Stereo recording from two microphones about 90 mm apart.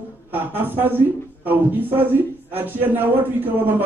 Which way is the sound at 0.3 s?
25° right (ahead or behind).